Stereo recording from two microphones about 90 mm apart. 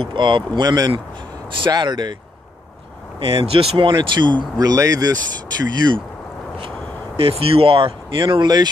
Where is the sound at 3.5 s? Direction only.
80° right.